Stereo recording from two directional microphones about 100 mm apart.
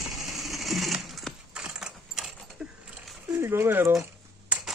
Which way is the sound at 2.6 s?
5° right (ahead or behind).